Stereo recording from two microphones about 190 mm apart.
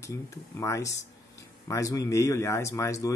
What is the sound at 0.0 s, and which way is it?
Speech, 15° left (ahead or behind).